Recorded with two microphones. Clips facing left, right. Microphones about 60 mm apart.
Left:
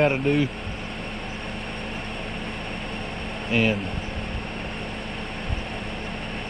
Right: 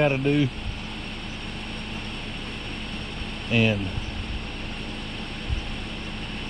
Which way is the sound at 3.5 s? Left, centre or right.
Left.